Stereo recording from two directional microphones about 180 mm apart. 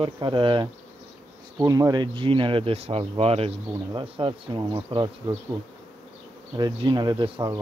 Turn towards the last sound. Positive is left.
turn(degrees=-20)  # may be behind; listen again after turning